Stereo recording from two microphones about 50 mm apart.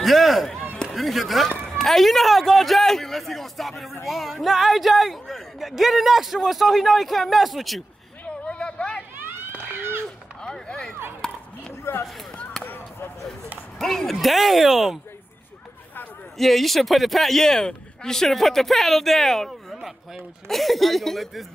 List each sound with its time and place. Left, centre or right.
0.0 s a man's voice: centre
8.5 s a sound: left
9.8 s a sound: right
10.4 s speech: centre
11.9 s speech: left
13.7 s a man's voice: centre
16.3 s a man's voice: centre